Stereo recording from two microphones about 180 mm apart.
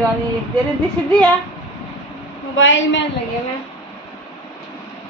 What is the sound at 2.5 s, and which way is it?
Speech, 90° left.